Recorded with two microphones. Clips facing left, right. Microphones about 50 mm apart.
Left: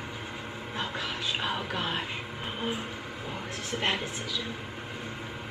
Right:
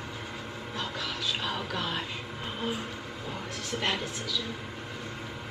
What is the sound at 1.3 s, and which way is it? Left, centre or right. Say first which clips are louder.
Speech: left 2 dB; centre.